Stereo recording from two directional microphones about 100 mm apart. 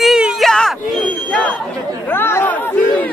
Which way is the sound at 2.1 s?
25° left (ahead or behind).